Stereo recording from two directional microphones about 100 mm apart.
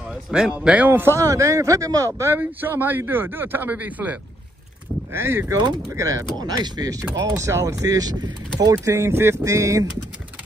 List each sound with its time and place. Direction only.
0.1 s a man's voice: 10° right (ahead or behind)
1.1 s speech: 35° right (ahead or behind)
8.8 s speech: 25° right (ahead or behind)